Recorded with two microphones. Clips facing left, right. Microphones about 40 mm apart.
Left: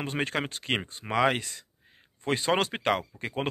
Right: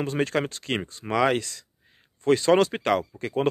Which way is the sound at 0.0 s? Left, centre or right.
Left.